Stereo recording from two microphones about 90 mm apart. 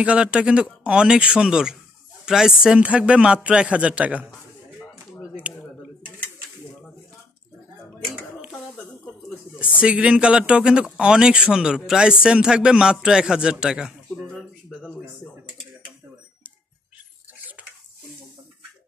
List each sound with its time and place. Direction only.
0.0 s speech: 15° right (ahead or behind)
5.3 s a sound: 15° right (ahead or behind)
8.5 s dishes: 20° left (ahead or behind)
9.8 s speech: 15° right (ahead or behind)